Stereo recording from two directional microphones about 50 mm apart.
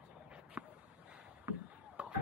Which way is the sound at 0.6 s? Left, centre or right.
Right.